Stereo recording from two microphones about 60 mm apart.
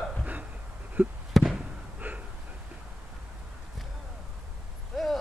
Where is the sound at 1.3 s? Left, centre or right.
Centre.